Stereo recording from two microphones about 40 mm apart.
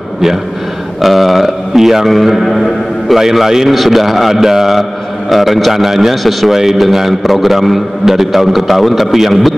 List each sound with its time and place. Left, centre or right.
1.0 s a man's voice: centre
2.0 s a man's voice: centre
3.2 s a man's voice: centre